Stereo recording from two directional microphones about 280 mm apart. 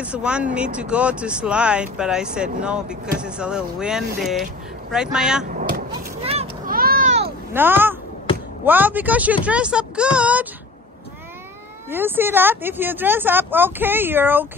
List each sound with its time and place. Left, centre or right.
0.0 s speech: centre
5.5 s a sound: right
5.9 s vehicle: centre; by 7.3 s right
7.5 s speech: centre
11.9 s speech: centre